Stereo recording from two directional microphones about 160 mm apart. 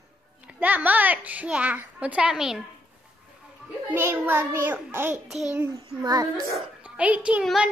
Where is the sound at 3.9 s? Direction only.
15° right (ahead or behind).